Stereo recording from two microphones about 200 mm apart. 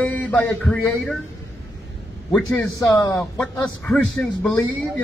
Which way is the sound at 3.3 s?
5° left (ahead or behind).